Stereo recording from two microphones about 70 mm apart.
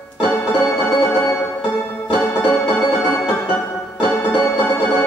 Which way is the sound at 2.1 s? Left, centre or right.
Left.